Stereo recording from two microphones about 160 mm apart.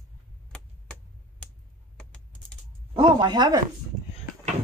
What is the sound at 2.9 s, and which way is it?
Speech, 30° right (ahead or behind).